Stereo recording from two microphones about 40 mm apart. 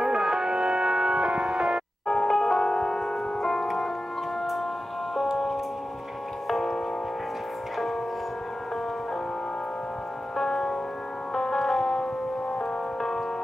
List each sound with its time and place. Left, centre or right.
0.0 s music: centre
2.0 s music: centre
6.5 s music: centre
10.3 s music: centre